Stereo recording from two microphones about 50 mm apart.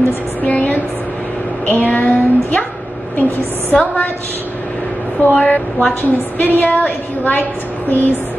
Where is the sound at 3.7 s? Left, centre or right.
Left.